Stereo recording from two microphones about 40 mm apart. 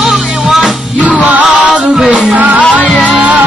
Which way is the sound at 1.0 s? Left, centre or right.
Right.